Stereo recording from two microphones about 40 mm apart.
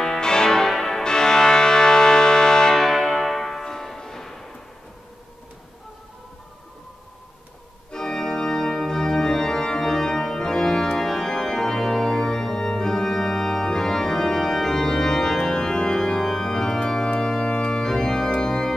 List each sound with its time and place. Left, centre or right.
0.0 s change ringing: centre
1.0 s music: centre
2.7 s music: centre
7.9 s organ: centre